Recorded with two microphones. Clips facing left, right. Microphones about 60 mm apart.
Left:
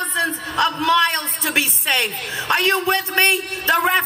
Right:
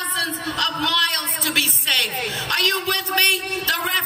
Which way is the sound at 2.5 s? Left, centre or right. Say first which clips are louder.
Left 5 dB; left.